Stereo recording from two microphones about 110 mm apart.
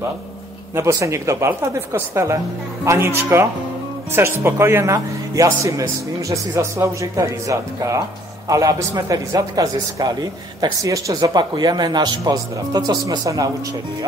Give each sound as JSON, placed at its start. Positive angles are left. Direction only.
{"t": 0.7, "sound": "a man's voice", "side_deg": -25}